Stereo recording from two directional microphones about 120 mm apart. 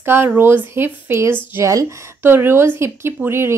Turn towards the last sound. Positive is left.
turn(degrees=-20)  # may be behind; listen again after turning